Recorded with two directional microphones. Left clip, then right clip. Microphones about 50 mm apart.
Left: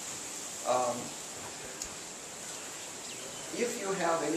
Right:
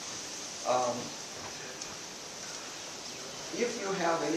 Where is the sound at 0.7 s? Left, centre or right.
Centre.